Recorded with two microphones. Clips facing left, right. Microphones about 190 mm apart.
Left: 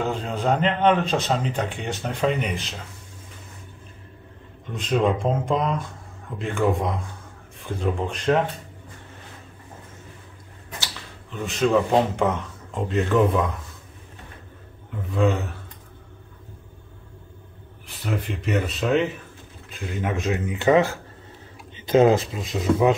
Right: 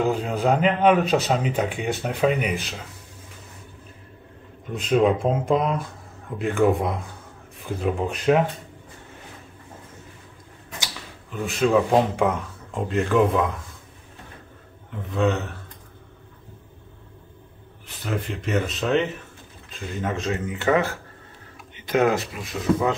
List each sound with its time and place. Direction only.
0.0 s speech: 10° right (ahead or behind)
4.6 s speech: 5° right (ahead or behind)
11.3 s speech: 5° right (ahead or behind)
15.1 s speech: 5° left (ahead or behind)
18.0 s speech: centre (ahead or behind)
20.0 s speech: 15° left (ahead or behind)
21.8 s speech: 25° left (ahead or behind)